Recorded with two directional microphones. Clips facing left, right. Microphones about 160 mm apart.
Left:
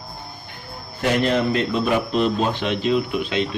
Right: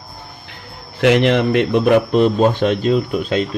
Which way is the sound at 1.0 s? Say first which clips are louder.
Right 6 dB; 85° right.